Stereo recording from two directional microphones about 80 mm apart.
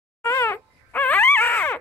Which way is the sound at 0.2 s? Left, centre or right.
Left.